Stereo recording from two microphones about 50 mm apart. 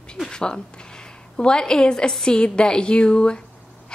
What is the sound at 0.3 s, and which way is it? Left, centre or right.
A woman's voice, centre.